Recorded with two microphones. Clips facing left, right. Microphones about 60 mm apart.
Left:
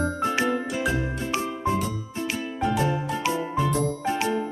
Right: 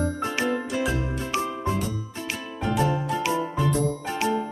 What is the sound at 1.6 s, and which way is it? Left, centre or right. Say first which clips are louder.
Music: left 2 dB; centre.